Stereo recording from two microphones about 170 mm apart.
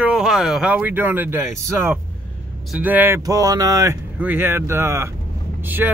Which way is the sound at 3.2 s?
20° right (ahead or behind).